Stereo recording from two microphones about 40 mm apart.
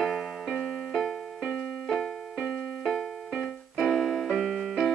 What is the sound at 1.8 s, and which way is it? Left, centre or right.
Keyboard, centre.